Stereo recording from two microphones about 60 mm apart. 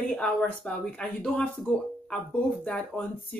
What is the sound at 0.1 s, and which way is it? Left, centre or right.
A woman's voice, centre.